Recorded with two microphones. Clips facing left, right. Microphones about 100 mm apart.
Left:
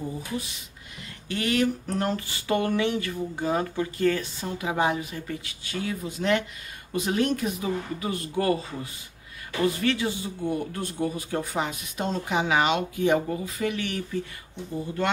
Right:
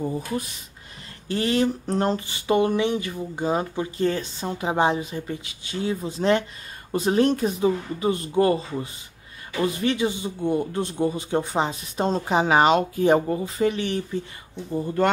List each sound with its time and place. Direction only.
1.3 s a man's voice: 30° right (ahead or behind)